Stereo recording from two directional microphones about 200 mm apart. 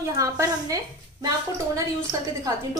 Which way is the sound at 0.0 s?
15° right (ahead or behind).